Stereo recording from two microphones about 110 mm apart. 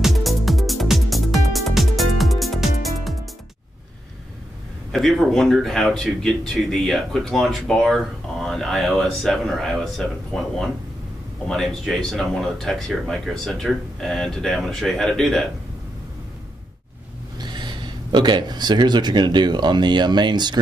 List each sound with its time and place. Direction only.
0.0 s music: centre (ahead or behind)
4.9 s speech: centre (ahead or behind)
17.6 s speech: 40° right (ahead or behind)